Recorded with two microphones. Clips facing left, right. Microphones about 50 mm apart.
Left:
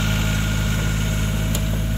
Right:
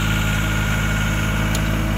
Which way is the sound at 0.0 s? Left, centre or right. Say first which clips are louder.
Right 2 dB; right.